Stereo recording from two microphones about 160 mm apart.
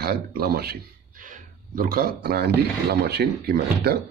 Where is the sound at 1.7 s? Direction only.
65° right (ahead or behind).